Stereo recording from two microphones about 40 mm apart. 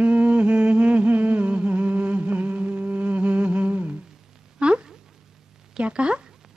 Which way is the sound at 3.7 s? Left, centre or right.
Right.